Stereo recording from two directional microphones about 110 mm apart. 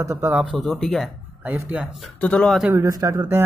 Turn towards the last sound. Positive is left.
turn(degrees=-30)  # may be behind; listen again after turning